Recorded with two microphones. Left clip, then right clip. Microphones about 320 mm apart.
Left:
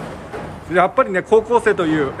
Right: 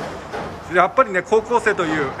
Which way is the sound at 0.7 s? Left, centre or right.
Centre.